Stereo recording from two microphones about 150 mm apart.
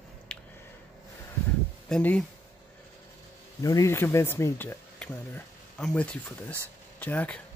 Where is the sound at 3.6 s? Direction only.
20° left (ahead or behind).